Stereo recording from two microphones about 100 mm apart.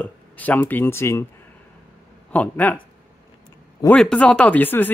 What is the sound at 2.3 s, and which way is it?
Speech, 15° left (ahead or behind).